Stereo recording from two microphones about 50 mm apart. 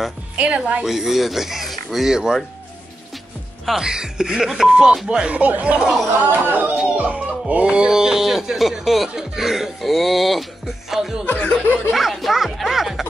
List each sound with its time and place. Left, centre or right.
0.4 s speech: right
0.8 s speech: centre
3.7 s speech: centre
5.3 s speech: right
6.1 s speech: right
7.0 s speech: right; by 11.2 s centre
11.2 s speech: left
11.9 s speech: centre